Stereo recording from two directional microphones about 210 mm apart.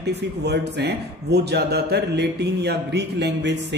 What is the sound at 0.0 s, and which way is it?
A man's voice, 50° right (ahead or behind).